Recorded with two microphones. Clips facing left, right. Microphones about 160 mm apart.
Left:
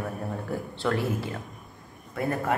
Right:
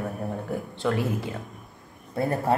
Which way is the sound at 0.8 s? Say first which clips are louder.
Right 1 dB; 20° right (ahead or behind).